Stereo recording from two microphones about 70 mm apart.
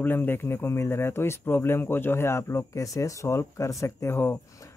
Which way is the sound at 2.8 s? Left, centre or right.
Left.